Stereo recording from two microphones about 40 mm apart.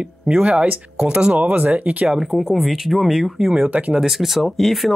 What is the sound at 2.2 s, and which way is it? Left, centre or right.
Speech, centre.